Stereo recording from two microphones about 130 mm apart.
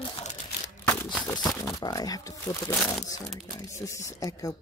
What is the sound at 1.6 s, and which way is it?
Speech, 30° left (ahead or behind).